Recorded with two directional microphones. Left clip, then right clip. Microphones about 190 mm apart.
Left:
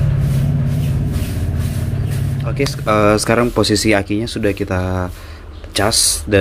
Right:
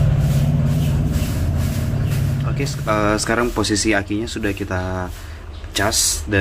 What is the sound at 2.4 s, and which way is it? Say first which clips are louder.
Speech: left 5 dB; 25° left (ahead or behind).